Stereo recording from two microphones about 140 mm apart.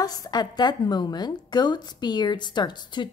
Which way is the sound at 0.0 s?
25° left (ahead or behind).